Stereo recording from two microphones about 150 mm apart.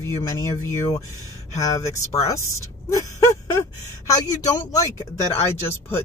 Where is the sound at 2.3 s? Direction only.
20° left (ahead or behind).